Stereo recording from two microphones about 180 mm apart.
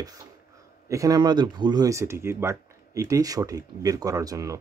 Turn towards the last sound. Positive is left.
turn(degrees=-20)  # may be behind; listen again after turning